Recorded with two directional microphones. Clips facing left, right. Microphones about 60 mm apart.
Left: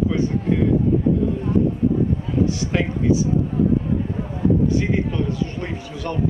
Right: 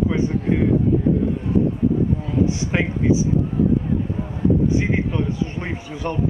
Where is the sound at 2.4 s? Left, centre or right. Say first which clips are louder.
Even; right.